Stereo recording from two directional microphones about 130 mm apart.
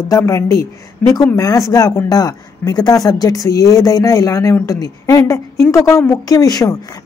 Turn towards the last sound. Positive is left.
turn(degrees=25)  # may be behind; listen again after turning